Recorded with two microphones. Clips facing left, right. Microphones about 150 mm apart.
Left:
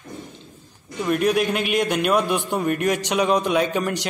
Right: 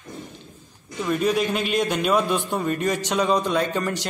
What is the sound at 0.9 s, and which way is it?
A man's voice, 5° left (ahead or behind).